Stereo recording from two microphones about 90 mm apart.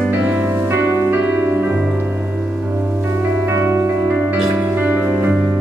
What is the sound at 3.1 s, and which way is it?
Music, 25° right (ahead or behind).